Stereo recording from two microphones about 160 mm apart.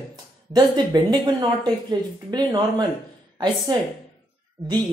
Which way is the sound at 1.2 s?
25° right (ahead or behind).